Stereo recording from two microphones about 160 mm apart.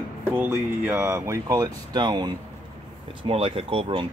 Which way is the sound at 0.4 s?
15° right (ahead or behind).